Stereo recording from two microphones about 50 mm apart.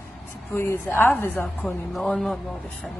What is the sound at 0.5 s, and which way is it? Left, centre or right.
Speech, left.